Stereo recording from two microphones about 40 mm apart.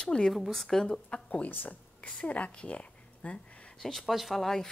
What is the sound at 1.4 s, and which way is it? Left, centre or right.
Speech, left.